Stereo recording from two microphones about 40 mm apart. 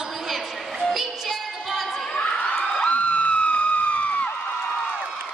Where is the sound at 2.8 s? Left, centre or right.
Left.